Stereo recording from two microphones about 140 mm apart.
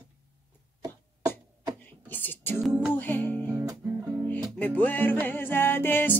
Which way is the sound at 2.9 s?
10° left (ahead or behind).